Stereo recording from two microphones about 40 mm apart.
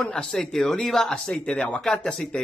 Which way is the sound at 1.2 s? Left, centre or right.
Left.